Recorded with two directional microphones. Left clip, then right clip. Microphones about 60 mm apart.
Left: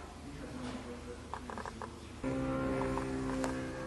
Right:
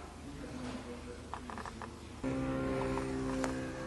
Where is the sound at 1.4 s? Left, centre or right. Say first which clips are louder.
Left 1 dB; centre.